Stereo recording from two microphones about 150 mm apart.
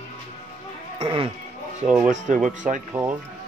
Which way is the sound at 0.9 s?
40° right (ahead or behind).